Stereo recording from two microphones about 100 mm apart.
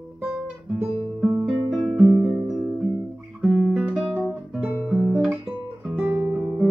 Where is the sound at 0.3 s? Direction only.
15° right (ahead or behind).